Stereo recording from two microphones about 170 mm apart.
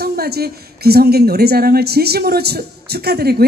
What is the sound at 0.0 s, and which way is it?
A woman's voice, 65° right (ahead or behind).